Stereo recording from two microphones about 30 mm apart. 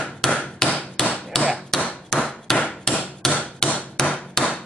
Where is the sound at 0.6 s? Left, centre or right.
Centre.